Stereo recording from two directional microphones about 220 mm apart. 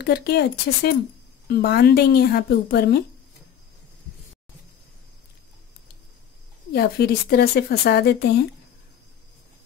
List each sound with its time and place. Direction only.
0.0 s speech: 45° left (ahead or behind)
6.7 s speech: 45° left (ahead or behind)